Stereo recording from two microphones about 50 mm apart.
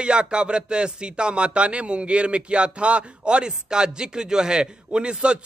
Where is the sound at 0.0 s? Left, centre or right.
Centre.